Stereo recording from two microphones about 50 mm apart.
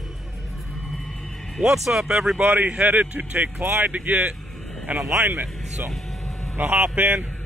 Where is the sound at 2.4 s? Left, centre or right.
Right.